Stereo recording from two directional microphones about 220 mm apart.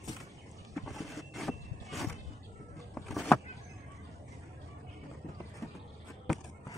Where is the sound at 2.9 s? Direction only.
Centre (ahead or behind).